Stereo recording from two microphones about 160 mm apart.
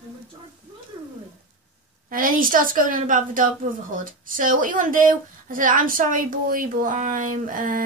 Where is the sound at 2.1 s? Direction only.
60° right (ahead or behind).